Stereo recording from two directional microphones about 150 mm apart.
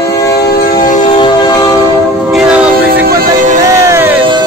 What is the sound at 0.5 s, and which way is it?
Train, 75° left (ahead or behind).